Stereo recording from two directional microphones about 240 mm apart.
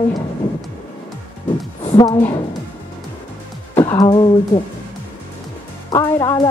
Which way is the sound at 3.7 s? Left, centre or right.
Centre.